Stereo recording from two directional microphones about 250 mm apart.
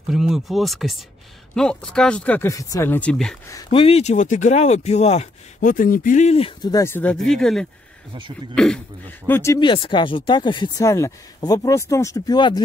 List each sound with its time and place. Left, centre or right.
0.1 s speech: centre
3.5 s speech: left